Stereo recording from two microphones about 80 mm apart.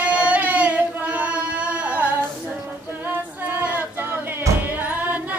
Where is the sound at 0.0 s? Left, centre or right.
Centre.